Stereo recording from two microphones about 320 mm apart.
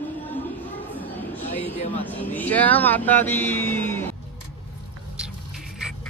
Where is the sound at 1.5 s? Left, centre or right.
Centre.